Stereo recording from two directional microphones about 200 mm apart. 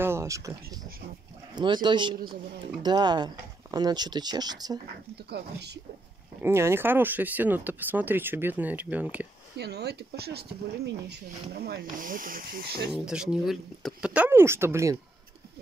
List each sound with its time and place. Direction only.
0.0 s speech: 15° right (ahead or behind)
5.1 s speech: 55° right (ahead or behind)
6.4 s speech: 10° right (ahead or behind)
9.6 s speech: 55° right (ahead or behind)
12.9 s speech: 5° right (ahead or behind)